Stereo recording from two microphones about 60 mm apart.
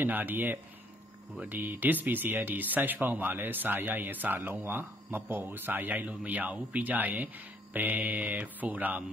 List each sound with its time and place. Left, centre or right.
0.0 s speech: right